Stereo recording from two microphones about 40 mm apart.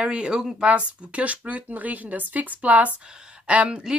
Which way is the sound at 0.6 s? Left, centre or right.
Right.